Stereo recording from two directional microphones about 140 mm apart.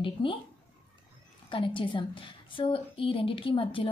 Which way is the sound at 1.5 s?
35° left (ahead or behind).